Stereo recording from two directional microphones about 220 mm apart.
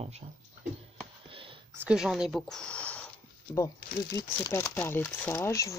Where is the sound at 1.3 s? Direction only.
25° right (ahead or behind).